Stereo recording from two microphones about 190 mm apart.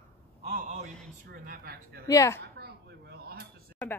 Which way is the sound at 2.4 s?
60° right (ahead or behind).